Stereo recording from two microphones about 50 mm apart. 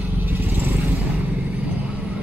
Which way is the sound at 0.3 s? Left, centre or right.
Right.